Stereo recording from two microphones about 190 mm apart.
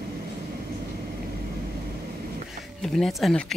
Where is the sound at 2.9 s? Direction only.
Centre (ahead or behind).